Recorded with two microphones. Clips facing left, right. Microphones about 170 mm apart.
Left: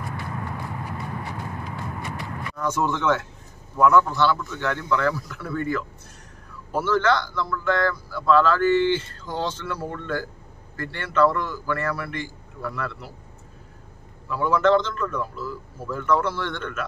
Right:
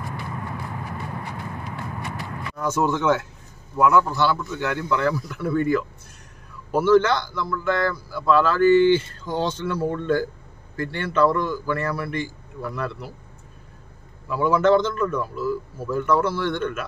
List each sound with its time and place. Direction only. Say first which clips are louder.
2.5 s speech: right 2 dB; 5° right (ahead or behind)
14.3 s speech: right 2 dB; 10° right (ahead or behind)